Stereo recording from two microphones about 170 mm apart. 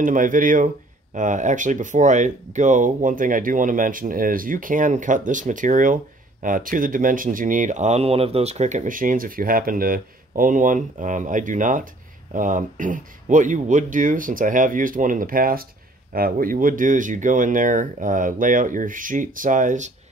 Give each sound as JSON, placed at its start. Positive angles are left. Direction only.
{"t": 0.0, "sound": "speech", "side_deg": -50}